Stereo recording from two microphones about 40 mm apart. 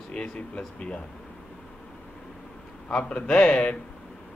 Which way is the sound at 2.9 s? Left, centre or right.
Left.